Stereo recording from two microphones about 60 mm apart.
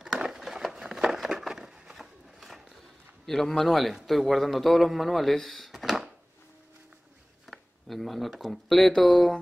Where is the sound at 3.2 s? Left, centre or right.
Centre.